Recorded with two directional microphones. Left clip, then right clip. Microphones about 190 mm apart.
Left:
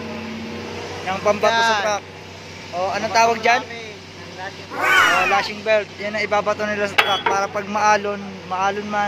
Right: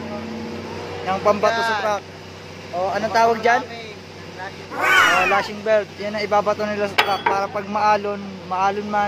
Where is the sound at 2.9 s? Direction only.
20° right (ahead or behind).